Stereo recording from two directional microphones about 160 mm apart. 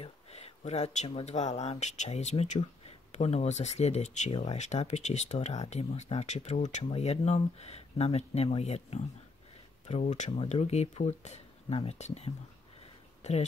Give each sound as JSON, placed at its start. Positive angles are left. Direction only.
{"t": 0.0, "sound": "speech", "side_deg": 40}